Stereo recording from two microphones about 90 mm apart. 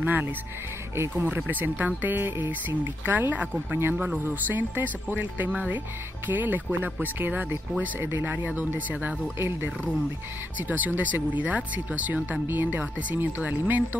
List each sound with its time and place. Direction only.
0.0 s speech: 20° right (ahead or behind)